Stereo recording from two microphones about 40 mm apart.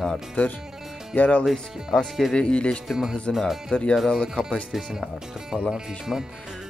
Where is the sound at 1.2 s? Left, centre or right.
Left.